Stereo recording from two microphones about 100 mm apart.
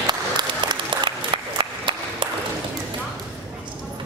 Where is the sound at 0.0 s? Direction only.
50° right (ahead or behind).